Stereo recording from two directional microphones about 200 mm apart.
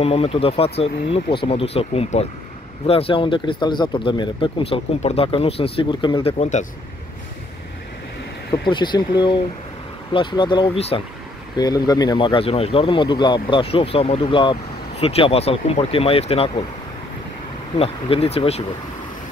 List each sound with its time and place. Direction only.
0.0 s speech: 30° left (ahead or behind)
8.6 s speech: 25° left (ahead or behind)
17.7 s speech: 30° left (ahead or behind)